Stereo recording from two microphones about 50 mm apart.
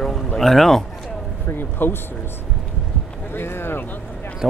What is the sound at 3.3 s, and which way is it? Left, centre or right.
Speech, left.